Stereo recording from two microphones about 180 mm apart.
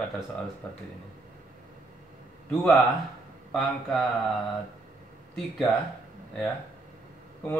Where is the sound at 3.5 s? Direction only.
Centre (ahead or behind).